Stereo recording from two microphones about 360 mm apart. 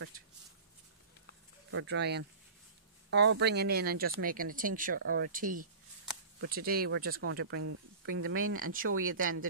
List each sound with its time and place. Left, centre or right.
1.7 s speech: right